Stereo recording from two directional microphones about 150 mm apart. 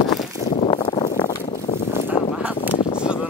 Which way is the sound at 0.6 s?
35° left (ahead or behind).